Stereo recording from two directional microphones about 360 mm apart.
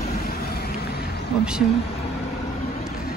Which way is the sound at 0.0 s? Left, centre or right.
Left.